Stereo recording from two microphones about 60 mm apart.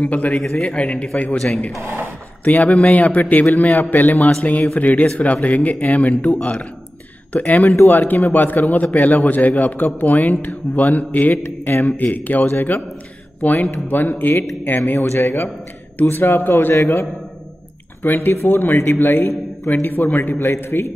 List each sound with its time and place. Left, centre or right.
0.0 s speech: left
0.4 s a man's voice: centre
1.7 s speech: right
2.4 s a man's voice: left
15.0 s a man's voice: left
16.7 s speech: left
18.0 s a man's voice: left
20.3 s speech: left